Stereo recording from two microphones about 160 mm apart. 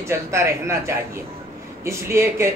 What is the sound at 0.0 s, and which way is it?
Speech, 15° right (ahead or behind).